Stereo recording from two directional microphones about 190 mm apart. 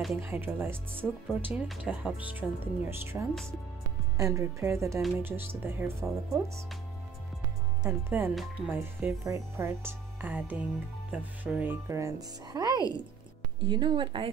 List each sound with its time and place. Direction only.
0.2 s speech: 10° right (ahead or behind)
7.8 s speech: 10° right (ahead or behind); by 14.3 s 25° right (ahead or behind)